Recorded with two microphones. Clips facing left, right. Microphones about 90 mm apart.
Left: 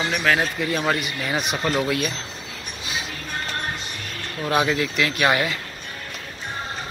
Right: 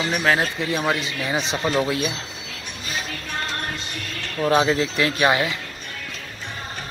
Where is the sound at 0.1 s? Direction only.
30° right (ahead or behind).